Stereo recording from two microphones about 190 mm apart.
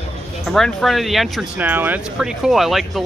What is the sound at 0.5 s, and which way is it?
Speech, centre (ahead or behind).